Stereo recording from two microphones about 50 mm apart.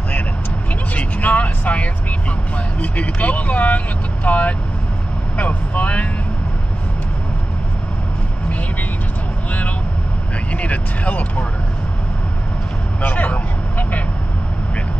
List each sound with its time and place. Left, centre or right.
0.9 s vehicle: left
2.8 s speech: left
9.5 s vehicle: left
10.5 s speech: left
13.0 s vehicle: left